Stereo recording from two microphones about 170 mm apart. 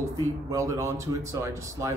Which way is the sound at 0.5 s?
15° right (ahead or behind).